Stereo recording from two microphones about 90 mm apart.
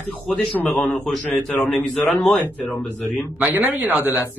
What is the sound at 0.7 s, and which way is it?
A man's voice, 20° left (ahead or behind).